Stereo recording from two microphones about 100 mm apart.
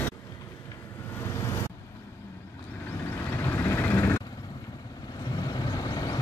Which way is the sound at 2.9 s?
20° left (ahead or behind).